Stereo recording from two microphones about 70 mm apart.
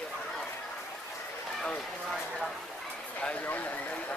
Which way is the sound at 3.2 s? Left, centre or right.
Centre.